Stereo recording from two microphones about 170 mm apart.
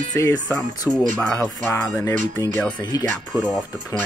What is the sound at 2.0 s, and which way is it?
Speech, 15° left (ahead or behind).